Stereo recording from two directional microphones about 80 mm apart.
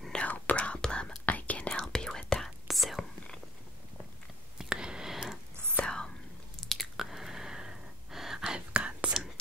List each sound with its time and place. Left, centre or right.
0.2 s whispering: centre
4.6 s a sound: centre
5.8 s whispering: centre
6.6 s chewing: centre